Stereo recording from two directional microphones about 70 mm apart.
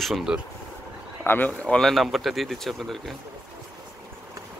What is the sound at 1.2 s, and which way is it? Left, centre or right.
Speech, left.